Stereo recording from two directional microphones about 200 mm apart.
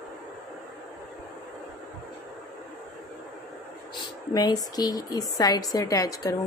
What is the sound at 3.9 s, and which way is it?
A woman's voice, 20° left (ahead or behind).